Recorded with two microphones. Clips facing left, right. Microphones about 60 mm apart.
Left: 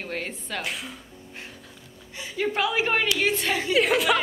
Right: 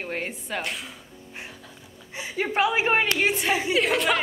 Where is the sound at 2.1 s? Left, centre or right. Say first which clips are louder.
Right 2 dB; right.